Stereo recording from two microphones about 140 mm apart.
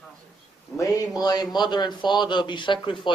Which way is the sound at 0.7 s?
25° left (ahead or behind).